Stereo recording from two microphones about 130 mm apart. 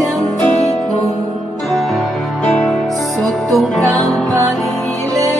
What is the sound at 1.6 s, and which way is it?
Music, centre (ahead or behind).